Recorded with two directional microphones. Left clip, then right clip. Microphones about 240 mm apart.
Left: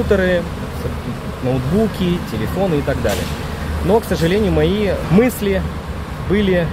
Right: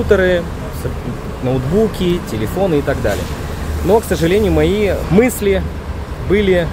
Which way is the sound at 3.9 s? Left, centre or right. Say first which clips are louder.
Right 3 dB; centre.